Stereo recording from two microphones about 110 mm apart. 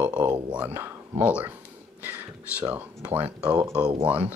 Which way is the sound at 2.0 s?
15° right (ahead or behind).